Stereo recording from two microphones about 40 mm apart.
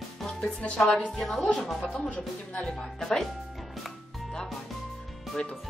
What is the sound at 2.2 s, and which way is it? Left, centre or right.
Speech, centre.